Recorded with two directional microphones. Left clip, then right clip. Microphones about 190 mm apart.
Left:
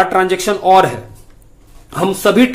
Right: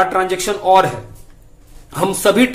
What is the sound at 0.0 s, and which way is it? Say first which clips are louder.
A man's voice: left 3 dB; 20° left (ahead or behind).